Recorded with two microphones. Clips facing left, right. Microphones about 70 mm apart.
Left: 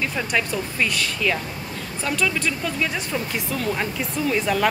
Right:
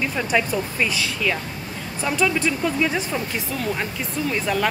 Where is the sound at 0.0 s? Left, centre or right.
Centre.